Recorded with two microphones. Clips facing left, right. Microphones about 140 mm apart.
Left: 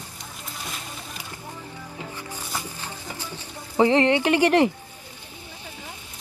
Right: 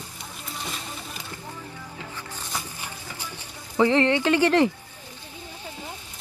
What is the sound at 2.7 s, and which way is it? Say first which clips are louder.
Music: left 2 dB; 10° right (ahead or behind).